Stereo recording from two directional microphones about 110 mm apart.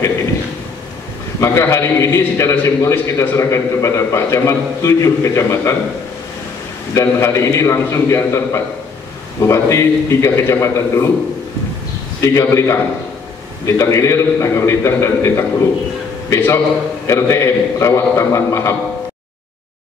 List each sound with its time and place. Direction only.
1.4 s a man's voice: 25° left (ahead or behind)
6.9 s a man's voice: 25° left (ahead or behind)
12.2 s a man's voice: 25° left (ahead or behind)